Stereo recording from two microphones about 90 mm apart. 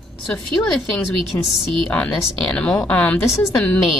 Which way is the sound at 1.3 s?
45° left (ahead or behind).